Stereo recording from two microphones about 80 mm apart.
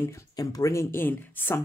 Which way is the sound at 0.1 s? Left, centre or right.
Left.